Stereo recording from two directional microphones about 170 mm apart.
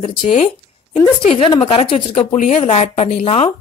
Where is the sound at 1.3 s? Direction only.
35° left (ahead or behind).